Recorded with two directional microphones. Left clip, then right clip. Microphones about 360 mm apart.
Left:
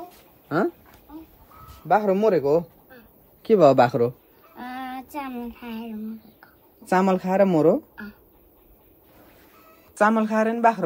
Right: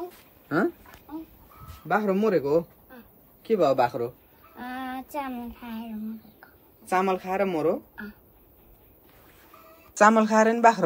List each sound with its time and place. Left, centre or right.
0.5 s speech: centre
1.9 s a man's voice: centre
3.4 s a man's voice: left
4.6 s a sound: centre
6.9 s a man's voice: centre
9.9 s speech: centre